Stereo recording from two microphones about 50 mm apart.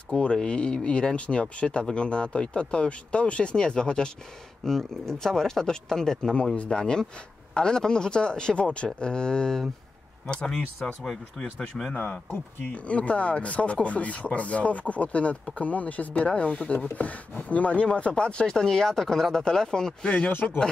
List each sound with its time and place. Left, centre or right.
0.1 s speech: left
6.3 s speech: left; by 11.4 s centre
11.9 s speech: left
12.7 s speech: left